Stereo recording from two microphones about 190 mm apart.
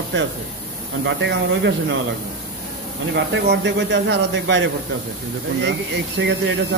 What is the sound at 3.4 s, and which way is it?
Speech, 65° right (ahead or behind).